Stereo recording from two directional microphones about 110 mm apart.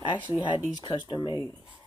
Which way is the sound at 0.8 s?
45° left (ahead or behind).